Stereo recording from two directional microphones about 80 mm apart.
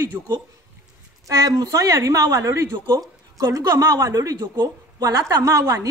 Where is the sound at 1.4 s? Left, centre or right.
Right.